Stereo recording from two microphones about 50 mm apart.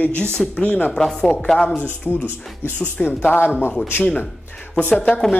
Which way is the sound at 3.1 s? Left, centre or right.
Left.